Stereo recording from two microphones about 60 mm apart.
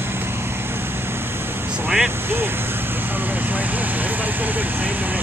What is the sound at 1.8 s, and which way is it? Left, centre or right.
Speech, centre.